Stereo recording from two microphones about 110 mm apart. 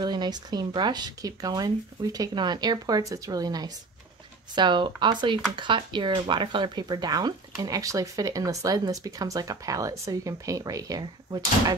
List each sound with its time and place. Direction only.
0.0 s speech: 40° right (ahead or behind)